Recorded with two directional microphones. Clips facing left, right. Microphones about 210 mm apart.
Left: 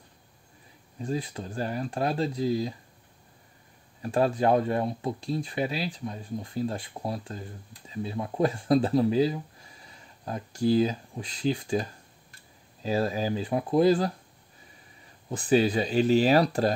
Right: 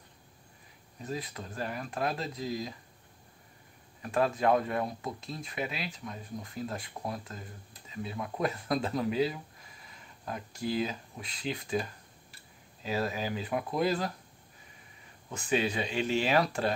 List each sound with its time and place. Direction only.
0.9 s speech: 30° left (ahead or behind)
4.0 s speech: 30° left (ahead or behind)
15.2 s speech: 35° left (ahead or behind)